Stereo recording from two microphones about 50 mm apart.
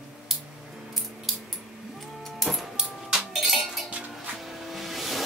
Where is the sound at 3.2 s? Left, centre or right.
Centre.